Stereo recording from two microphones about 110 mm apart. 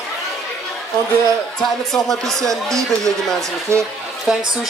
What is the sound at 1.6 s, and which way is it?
A man's voice, 5° left (ahead or behind).